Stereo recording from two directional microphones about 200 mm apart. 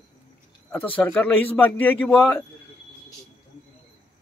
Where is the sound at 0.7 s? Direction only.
10° left (ahead or behind).